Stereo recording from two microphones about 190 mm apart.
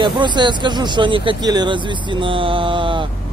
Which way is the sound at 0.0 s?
25° right (ahead or behind).